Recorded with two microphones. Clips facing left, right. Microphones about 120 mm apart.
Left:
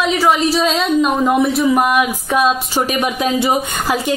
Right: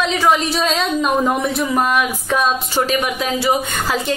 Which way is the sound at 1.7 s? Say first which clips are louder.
Left 3 dB; 15° left (ahead or behind).